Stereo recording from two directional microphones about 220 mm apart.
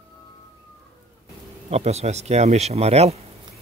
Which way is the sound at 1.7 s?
30° right (ahead or behind).